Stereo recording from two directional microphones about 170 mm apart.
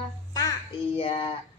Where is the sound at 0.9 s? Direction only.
30° left (ahead or behind).